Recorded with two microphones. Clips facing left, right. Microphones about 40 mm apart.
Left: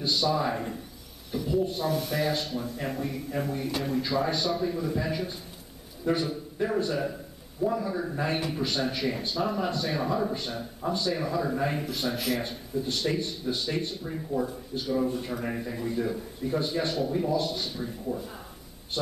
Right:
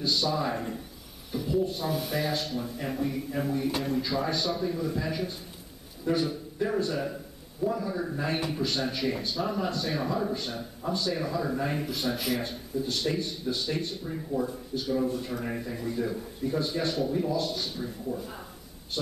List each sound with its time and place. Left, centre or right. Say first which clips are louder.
0.0 s speech: left 2 dB; centre
15.0 s a man's voice: left 1 dB; centre
15.3 s a man's voice: left 1 dB; centre